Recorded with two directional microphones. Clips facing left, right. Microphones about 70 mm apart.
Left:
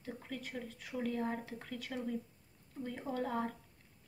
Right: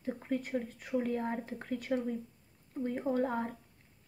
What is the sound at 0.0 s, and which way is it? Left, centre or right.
A woman's voice, right.